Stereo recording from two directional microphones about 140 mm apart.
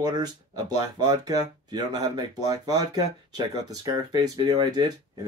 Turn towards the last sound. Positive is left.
turn(degrees=-30)  # may be behind; listen again after turning